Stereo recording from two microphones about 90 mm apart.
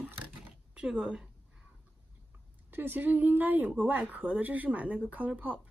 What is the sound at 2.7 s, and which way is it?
Speech, 20° right (ahead or behind).